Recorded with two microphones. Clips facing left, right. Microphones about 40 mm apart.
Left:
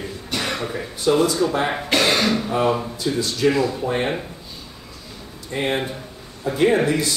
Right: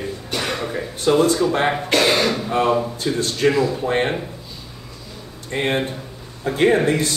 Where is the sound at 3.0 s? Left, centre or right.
Right.